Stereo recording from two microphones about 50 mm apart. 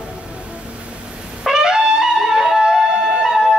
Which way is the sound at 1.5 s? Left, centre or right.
Centre.